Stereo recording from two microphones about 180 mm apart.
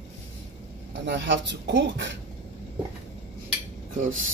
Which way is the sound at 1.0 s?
80° right.